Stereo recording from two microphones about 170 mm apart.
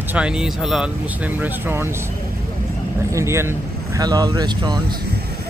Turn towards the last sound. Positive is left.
turn(degrees=-25)  # may be behind; listen again after turning